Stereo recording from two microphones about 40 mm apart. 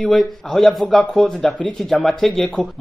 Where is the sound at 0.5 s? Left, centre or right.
Centre.